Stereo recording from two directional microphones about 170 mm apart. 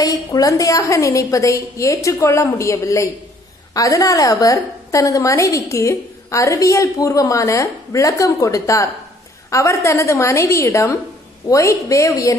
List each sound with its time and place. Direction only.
0.0 s a woman's voice: 20° left (ahead or behind)